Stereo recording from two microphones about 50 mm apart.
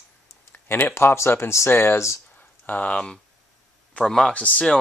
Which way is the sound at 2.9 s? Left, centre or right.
Centre.